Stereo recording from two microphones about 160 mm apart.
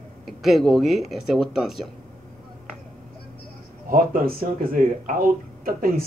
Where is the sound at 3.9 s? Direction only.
65° right (ahead or behind).